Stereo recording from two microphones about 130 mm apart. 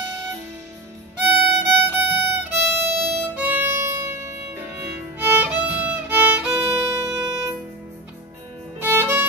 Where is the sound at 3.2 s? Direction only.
15° right (ahead or behind).